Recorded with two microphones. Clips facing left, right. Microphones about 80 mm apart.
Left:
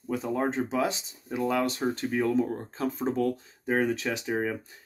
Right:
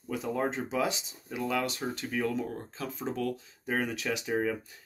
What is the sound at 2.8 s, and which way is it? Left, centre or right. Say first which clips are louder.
Speech: left 6 dB; left.